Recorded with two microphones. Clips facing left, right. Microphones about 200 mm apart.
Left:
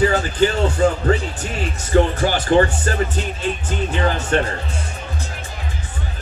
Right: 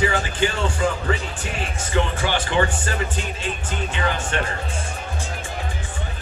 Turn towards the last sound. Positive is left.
turn(degrees=40)  # may be behind; listen again after turning